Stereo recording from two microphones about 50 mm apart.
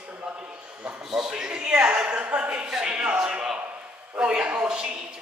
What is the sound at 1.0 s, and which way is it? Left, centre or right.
A man's voice, centre.